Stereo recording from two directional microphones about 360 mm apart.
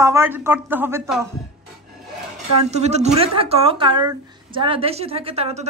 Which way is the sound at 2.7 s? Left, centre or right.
Centre.